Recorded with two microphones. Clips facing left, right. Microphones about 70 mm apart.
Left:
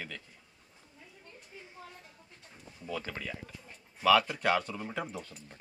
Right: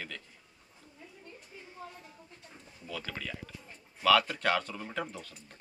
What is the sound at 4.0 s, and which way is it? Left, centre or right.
Speech, centre.